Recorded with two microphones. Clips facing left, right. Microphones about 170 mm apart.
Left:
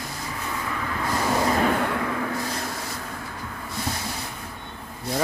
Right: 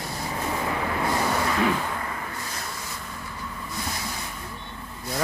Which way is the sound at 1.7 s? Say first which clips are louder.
Left 6 dB; 75° left (ahead or behind).